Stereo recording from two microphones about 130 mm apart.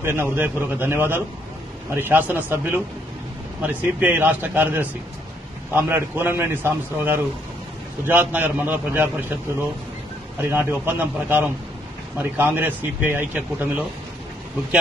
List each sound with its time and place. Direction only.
0.0 s a man's voice: 20° right (ahead or behind)
10.5 s a man's voice: 20° right (ahead or behind)